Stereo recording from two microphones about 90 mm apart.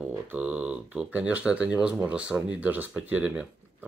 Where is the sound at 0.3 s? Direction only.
15° right (ahead or behind).